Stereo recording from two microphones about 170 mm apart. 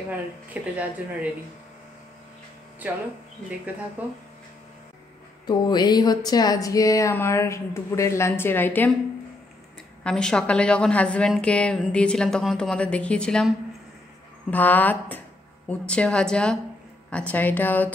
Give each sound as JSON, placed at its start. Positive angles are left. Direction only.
{"t": 0.5, "sound": "speech", "side_deg": -10}
{"t": 2.8, "sound": "speech", "side_deg": -10}
{"t": 5.5, "sound": "speech", "side_deg": 25}
{"t": 10.0, "sound": "a woman's voice", "side_deg": 5}
{"t": 14.5, "sound": "a woman's voice", "side_deg": 10}